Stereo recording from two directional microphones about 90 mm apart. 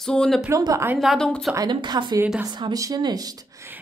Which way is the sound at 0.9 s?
5° left (ahead or behind).